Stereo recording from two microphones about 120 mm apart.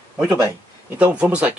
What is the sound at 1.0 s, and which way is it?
Speech, 10° right (ahead or behind).